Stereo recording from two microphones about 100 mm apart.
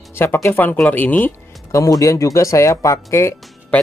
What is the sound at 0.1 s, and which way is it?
Speech, 25° left (ahead or behind).